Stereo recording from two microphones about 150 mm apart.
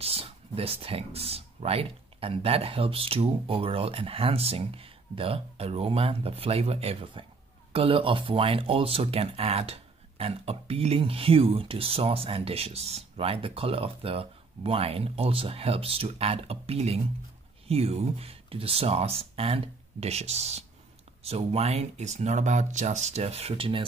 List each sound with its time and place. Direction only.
0.0 s speech: 40° right (ahead or behind)